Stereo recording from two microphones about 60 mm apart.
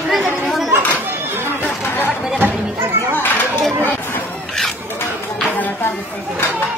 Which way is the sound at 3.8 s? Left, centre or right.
Left.